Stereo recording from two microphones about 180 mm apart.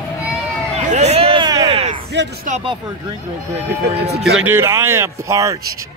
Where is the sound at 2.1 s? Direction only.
75° right (ahead or behind).